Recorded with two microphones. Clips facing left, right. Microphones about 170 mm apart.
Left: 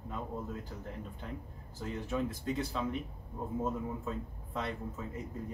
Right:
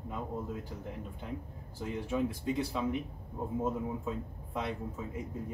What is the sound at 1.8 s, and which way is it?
Speech, 10° right (ahead or behind).